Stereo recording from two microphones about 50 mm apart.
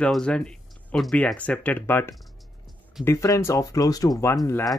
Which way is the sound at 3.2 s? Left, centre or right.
Left.